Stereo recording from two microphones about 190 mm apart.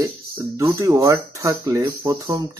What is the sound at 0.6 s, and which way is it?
Speech, 15° right (ahead or behind).